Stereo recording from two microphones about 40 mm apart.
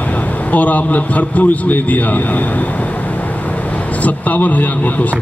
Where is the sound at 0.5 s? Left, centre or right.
Left.